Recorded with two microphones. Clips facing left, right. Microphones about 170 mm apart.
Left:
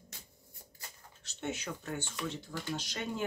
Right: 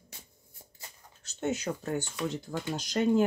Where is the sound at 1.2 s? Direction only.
40° right (ahead or behind).